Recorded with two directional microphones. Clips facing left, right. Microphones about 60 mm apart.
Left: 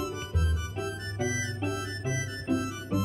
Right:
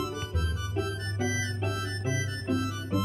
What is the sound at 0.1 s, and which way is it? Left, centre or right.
Music, left.